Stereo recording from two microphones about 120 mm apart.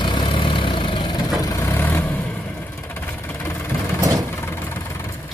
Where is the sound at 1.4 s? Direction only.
25° left (ahead or behind).